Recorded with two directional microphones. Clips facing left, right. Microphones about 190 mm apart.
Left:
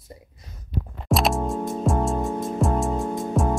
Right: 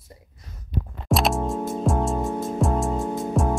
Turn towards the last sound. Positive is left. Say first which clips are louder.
# even
turn(degrees=0)  # may be behind; listen again after turning